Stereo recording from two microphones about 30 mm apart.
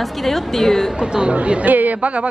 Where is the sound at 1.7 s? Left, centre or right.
Right.